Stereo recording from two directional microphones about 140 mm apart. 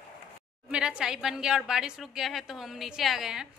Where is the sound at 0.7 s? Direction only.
5° right (ahead or behind).